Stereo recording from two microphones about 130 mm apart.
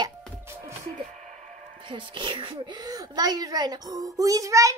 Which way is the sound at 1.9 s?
40° right (ahead or behind).